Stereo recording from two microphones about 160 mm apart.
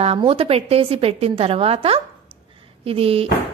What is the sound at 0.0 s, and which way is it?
A woman's voice, 35° right (ahead or behind).